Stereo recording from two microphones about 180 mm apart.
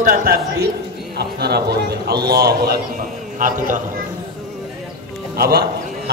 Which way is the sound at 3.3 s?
50° right (ahead or behind).